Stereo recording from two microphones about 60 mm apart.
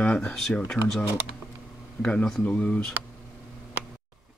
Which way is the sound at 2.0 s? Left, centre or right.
Left.